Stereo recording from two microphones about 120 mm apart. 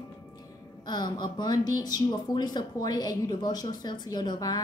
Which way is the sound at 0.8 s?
35° left (ahead or behind).